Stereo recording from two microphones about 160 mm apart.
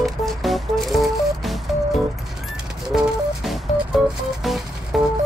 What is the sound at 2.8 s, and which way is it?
Music, centre (ahead or behind).